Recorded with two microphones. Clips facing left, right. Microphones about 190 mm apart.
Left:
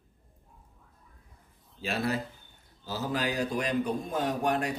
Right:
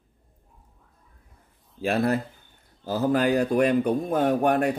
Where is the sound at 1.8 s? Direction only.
55° right (ahead or behind).